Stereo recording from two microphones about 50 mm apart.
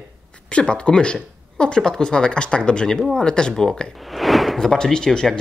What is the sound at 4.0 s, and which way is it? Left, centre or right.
Speech, centre.